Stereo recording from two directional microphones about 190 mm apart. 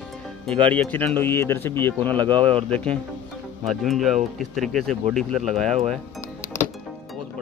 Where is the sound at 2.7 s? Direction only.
5° left (ahead or behind).